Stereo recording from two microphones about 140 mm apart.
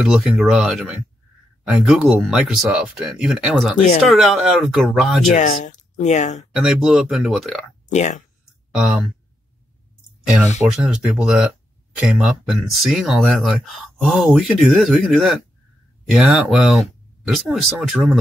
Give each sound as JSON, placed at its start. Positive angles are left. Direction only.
{"t": 0.0, "sound": "speech", "side_deg": -5}
{"t": 5.3, "sound": "speech", "side_deg": 60}
{"t": 6.5, "sound": "speech", "side_deg": -5}
{"t": 7.9, "sound": "speech", "side_deg": 55}
{"t": 8.7, "sound": "speech", "side_deg": -5}
{"t": 10.8, "sound": "speech", "side_deg": -5}